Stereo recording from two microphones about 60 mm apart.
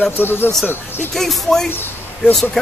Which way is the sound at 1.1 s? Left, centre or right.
Centre.